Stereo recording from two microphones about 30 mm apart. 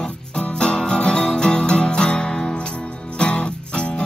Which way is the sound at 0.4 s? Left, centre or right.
Left.